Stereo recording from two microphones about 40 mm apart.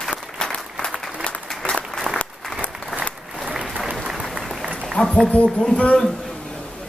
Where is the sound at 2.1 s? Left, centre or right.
Centre.